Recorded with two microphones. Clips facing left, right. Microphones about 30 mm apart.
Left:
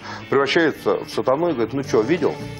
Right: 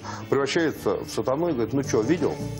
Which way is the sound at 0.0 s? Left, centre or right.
Left.